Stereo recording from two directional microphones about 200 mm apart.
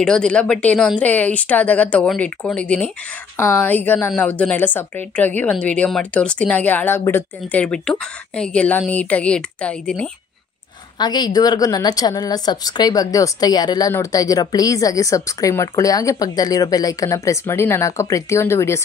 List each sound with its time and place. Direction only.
0.0 s a woman's voice: 5° left (ahead or behind)
11.0 s a woman's voice: 20° left (ahead or behind)